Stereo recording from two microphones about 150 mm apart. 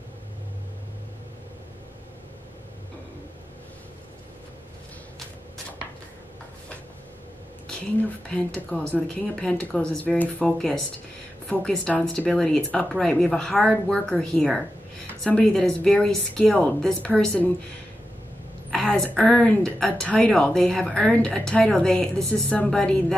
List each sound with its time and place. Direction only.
8.6 s a woman's voice: 10° left (ahead or behind)
18.7 s a woman's voice: 5° left (ahead or behind)